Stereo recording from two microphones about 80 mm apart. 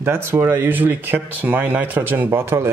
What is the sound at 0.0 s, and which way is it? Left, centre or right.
Speech, right.